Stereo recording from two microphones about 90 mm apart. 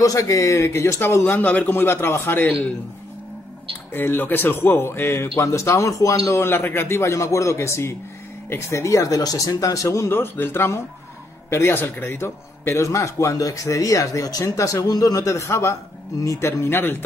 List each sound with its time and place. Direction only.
0.0 s speech: 40° left (ahead or behind)
3.9 s a man's voice: 20° left (ahead or behind)